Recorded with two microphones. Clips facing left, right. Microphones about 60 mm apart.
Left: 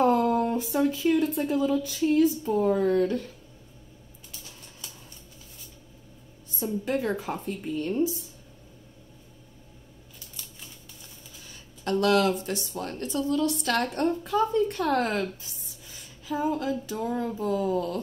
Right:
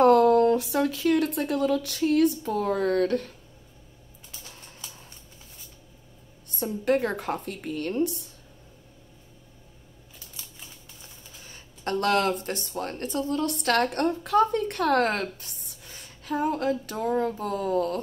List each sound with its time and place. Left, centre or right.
0.0 s speech: right
6.6 s a woman's voice: right
11.4 s speech: right